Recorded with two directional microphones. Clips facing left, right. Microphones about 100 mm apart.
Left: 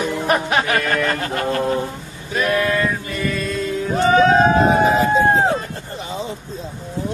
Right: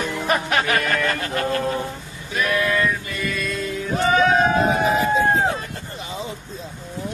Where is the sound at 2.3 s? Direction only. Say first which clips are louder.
Left 3 dB; 35° left (ahead or behind).